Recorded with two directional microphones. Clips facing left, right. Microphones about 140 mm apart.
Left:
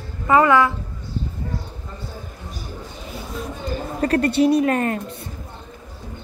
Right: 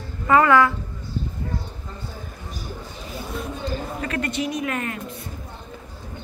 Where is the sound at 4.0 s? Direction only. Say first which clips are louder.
Left 12 dB; 40° left (ahead or behind).